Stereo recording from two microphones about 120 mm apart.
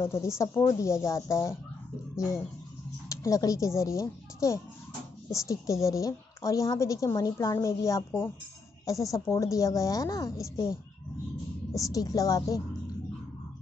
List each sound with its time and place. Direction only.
0.0 s a woman's voice: 25° left (ahead or behind)
11.8 s a woman's voice: 30° left (ahead or behind)